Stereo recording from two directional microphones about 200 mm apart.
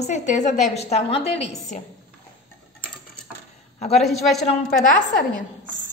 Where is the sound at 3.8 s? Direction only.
35° left (ahead or behind).